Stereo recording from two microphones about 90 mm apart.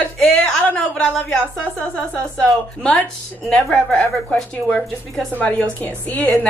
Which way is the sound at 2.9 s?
Centre (ahead or behind).